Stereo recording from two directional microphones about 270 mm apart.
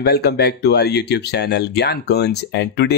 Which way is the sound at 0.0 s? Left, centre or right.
Left.